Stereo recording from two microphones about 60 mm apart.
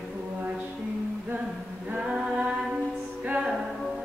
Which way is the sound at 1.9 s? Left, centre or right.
Centre.